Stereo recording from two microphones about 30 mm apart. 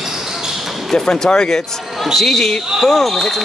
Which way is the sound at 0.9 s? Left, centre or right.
Left.